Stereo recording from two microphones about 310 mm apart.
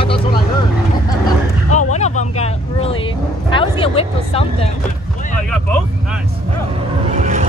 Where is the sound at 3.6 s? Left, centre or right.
Centre.